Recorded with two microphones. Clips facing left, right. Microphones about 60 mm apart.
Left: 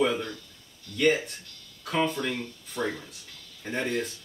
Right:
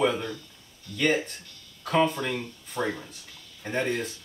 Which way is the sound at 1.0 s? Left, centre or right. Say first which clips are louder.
Left 1 dB; centre.